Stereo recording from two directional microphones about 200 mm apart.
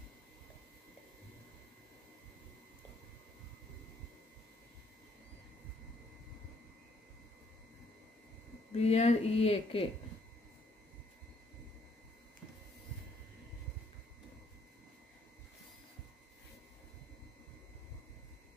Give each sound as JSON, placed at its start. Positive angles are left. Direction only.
{"t": 8.7, "sound": "speech", "side_deg": 30}